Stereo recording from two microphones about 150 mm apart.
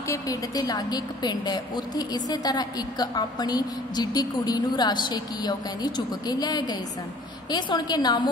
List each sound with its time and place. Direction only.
0.0 s a woman's voice: 20° left (ahead or behind)